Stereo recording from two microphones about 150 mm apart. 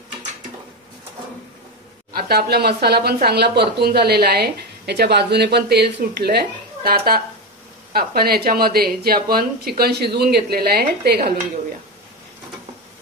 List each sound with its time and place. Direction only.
2.1 s speech: 90° right